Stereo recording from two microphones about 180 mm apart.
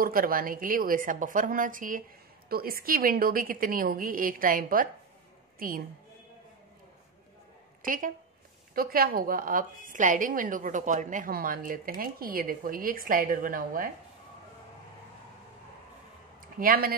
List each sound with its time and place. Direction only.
0.0 s a woman's voice: 55° right (ahead or behind)
7.8 s a woman's voice: 50° right (ahead or behind)
16.3 s a sound: 50° right (ahead or behind)